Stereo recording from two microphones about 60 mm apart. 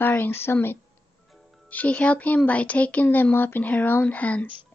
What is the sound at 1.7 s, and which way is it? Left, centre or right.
Speech, left.